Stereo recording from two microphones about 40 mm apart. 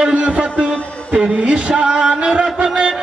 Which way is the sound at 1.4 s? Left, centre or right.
Right.